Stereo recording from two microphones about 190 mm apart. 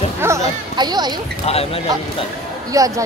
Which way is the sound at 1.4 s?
30° left (ahead or behind).